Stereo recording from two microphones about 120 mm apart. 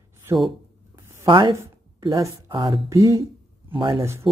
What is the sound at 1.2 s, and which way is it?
A woman's voice, 40° right (ahead or behind).